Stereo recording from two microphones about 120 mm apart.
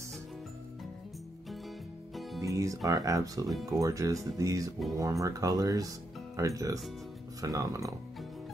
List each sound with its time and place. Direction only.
2.4 s speech: 25° right (ahead or behind)
3.4 s speech: centre (ahead or behind)
3.8 s speech: 25° right (ahead or behind)